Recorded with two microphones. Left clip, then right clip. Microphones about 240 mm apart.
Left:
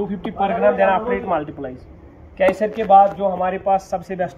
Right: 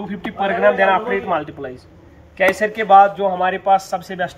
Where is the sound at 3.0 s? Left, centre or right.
Right.